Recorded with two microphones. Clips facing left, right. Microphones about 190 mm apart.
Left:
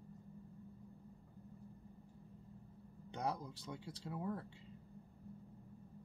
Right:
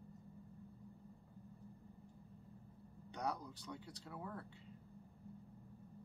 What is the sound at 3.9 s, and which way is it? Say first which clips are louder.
Speech: left 6 dB; 25° left (ahead or behind).